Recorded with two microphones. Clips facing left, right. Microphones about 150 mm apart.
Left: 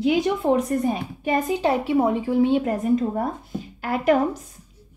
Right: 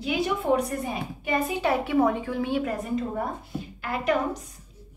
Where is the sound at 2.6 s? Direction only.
40° left (ahead or behind).